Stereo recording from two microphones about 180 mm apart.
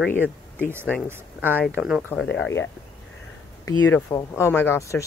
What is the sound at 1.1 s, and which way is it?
Speech, 10° right (ahead or behind).